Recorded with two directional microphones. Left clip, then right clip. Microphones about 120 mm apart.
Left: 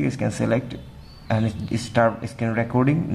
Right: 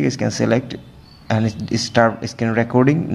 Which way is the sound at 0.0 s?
30° right (ahead or behind).